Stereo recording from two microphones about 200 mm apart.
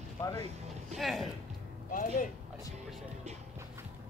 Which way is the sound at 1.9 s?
40° left (ahead or behind).